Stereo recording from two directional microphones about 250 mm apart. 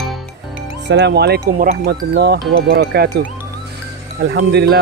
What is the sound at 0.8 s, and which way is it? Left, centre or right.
Speech, right.